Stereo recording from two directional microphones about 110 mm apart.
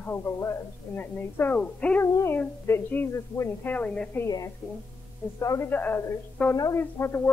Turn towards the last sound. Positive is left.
turn(degrees=20)  # may be behind; listen again after turning